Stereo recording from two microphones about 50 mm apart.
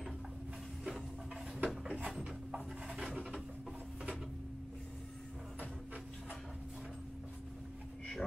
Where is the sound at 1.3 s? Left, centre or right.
Right.